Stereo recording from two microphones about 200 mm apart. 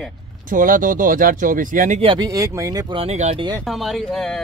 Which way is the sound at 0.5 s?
40° right (ahead or behind).